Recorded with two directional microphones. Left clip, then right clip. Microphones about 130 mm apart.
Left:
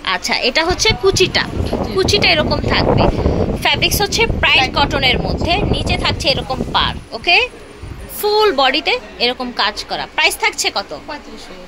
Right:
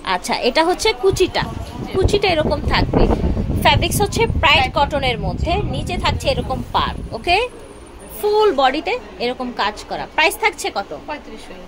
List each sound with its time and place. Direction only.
0.0 s a woman's voice: 15° right (ahead or behind)
2.5 s a woman's voice: 15° right (ahead or behind); by 6.2 s centre (ahead or behind)
6.2 s a woman's voice: 10° right (ahead or behind)
8.2 s a woman's voice: 5° right (ahead or behind)